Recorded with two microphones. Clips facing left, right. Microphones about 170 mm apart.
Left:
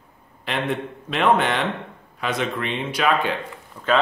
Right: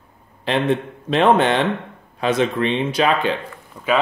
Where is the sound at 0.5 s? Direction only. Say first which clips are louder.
Right 6 dB; 30° right (ahead or behind).